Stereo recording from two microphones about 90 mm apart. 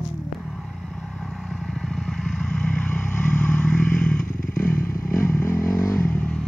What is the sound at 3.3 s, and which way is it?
Vehicle, 25° left (ahead or behind).